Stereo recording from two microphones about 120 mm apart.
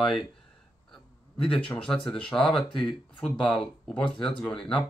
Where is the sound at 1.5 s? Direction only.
5° left (ahead or behind).